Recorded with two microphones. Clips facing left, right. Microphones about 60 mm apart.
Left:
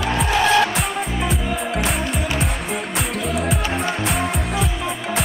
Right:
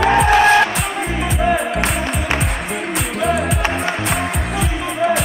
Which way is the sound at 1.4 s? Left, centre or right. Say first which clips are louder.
Right 6 dB; right.